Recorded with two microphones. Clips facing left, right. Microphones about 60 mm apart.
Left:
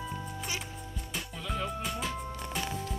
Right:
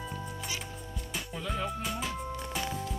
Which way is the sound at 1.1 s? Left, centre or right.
Centre.